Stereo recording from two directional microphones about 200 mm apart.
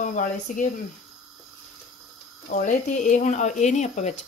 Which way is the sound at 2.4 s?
40° left (ahead or behind).